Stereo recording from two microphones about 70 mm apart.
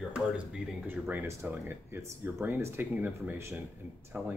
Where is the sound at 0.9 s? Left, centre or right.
Right.